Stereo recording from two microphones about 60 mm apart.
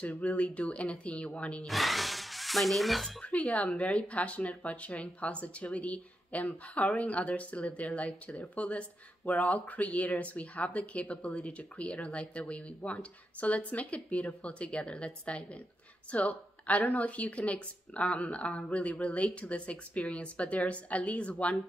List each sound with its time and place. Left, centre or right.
0.0 s speech: left
1.7 s speech: centre
3.2 s speech: left